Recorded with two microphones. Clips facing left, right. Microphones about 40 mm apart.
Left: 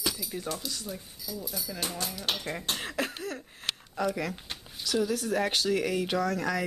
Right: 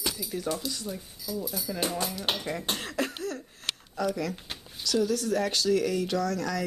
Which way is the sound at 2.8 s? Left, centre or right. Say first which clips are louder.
Right 1 dB; centre.